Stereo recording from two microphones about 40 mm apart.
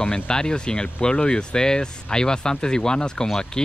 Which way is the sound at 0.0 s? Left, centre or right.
Left.